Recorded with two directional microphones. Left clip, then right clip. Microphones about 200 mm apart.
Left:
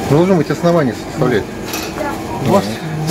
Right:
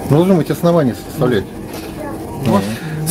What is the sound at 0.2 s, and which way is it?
Speech, 55° right (ahead or behind).